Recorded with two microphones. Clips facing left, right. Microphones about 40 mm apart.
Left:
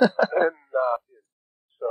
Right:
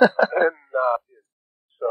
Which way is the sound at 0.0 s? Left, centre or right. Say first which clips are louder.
Right 3 dB; centre.